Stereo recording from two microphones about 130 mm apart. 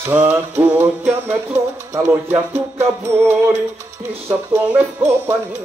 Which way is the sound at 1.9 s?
20° right (ahead or behind).